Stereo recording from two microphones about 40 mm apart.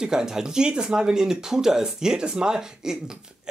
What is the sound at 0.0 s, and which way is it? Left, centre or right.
Speech, centre.